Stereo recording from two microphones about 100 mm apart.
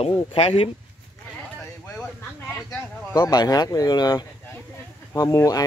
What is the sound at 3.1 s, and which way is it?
Speech, 40° left (ahead or behind).